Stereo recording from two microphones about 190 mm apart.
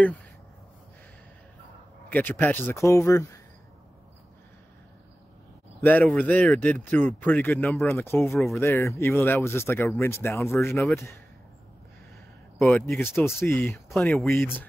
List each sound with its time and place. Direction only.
2.0 s speech: 10° left (ahead or behind)
5.9 s speech: 5° left (ahead or behind)
12.5 s speech: 15° left (ahead or behind)
13.9 s speech: centre (ahead or behind)